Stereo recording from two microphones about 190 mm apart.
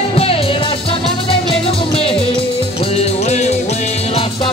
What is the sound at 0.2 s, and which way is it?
Music, 30° left (ahead or behind).